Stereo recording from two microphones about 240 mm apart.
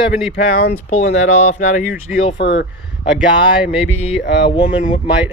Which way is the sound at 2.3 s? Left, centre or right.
Left.